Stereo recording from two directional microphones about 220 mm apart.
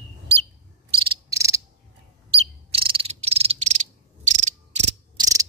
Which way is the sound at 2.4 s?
25° right (ahead or behind).